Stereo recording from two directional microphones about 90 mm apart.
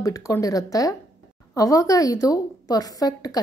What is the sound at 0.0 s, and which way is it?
A woman's voice, 35° left (ahead or behind).